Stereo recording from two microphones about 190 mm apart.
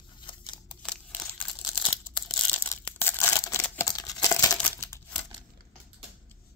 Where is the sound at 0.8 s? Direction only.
5° left (ahead or behind).